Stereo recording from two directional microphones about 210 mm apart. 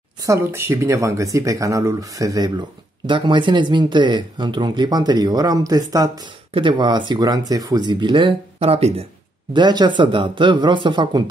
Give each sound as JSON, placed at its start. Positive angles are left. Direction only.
{"t": 0.2, "sound": "speech", "side_deg": -15}